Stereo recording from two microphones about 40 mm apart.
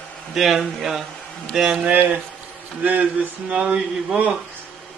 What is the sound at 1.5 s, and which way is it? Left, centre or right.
Mantra, centre.